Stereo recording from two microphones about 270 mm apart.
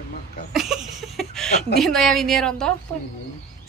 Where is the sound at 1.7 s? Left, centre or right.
Centre.